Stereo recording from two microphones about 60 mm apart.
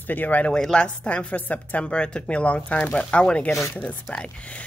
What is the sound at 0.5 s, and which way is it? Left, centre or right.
A woman's voice, centre.